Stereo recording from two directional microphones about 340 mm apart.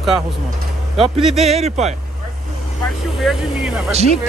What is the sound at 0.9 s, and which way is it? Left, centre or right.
Speech, centre.